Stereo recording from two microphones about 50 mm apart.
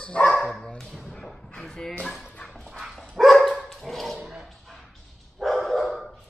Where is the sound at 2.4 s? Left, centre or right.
Centre.